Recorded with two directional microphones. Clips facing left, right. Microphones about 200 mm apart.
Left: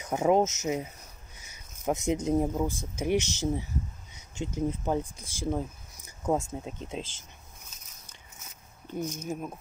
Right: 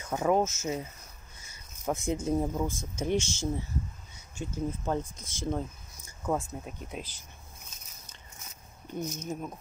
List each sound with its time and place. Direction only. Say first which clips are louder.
0.0 s speech: left 3 dB; 20° left (ahead or behind)
1.5 s a sound: left 2 dB; 20° left (ahead or behind)
2.2 s speech: left 2 dB; 15° left (ahead or behind)
5.0 s speech: left 2 dB; 30° left (ahead or behind)
5.5 s a sound: left 2 dB; 10° left (ahead or behind)
6.2 s speech: left 3 dB; 25° left (ahead or behind)
8.9 s speech: left 2 dB; 10° left (ahead or behind)